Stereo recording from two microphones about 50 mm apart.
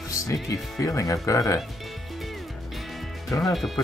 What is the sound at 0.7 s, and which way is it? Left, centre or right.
Speech, left.